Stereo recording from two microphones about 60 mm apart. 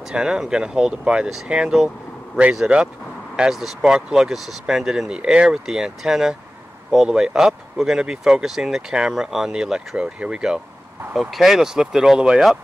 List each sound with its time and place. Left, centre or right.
0.0 s speech: centre
11.1 s speech: centre